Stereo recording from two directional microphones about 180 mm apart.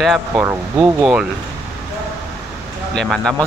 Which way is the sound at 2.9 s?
Centre (ahead or behind).